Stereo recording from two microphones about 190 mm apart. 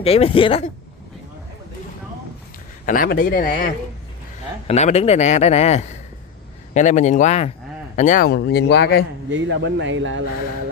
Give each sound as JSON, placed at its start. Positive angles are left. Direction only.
{"t": 0.0, "sound": "a man's voice", "side_deg": 30}
{"t": 2.8, "sound": "speech", "side_deg": 45}
{"t": 4.6, "sound": "a man's voice", "side_deg": 35}
{"t": 8.3, "sound": "speech", "side_deg": 60}
{"t": 9.3, "sound": "a man's voice", "side_deg": -75}